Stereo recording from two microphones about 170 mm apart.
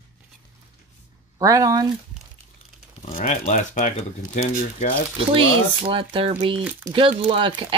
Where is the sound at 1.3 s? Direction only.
20° right (ahead or behind).